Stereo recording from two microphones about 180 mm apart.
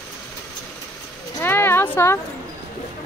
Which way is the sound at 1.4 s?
15° left (ahead or behind).